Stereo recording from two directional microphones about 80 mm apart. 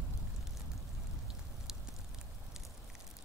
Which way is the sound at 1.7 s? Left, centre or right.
Centre.